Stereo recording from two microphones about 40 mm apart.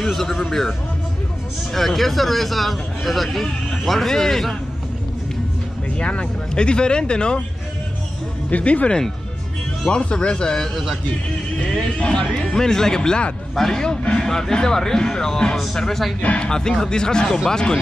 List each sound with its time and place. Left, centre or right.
0.0 s a man's voice: centre
5.9 s speech: left
8.5 s speech: left
12.0 s speech: left
13.8 s speech: centre
16.2 s speech: left
16.4 s speech: centre